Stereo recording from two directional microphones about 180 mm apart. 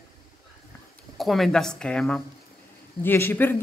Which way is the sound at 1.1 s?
Centre (ahead or behind).